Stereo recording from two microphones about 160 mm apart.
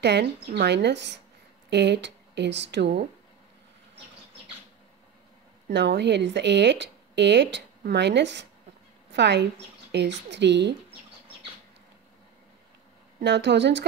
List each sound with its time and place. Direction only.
0.0 s speech: 80° right
5.7 s speech: 90° right
13.2 s speech: 90° right